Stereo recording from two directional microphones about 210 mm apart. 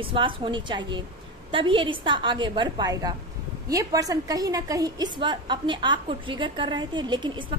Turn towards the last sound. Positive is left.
turn(degrees=-20)  # may be behind; listen again after turning